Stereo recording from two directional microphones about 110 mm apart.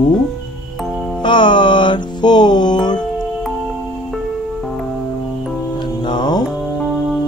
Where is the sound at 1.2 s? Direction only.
45° left (ahead or behind).